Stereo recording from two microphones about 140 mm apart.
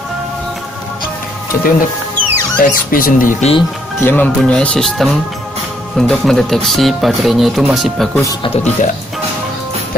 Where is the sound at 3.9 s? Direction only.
15° left (ahead or behind).